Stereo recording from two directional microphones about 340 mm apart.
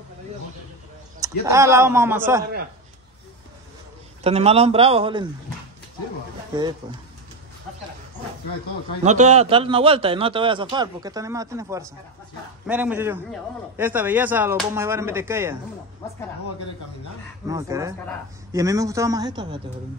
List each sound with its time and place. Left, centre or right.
1.4 s a man's voice: centre
4.2 s a man's voice: centre
9.0 s a man's voice: right
17.5 s a man's voice: centre